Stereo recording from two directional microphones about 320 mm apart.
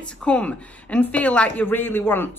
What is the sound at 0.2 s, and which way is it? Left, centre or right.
Speech, centre.